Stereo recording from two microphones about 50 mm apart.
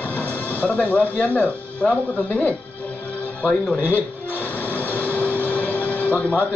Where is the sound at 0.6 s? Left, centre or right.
Left.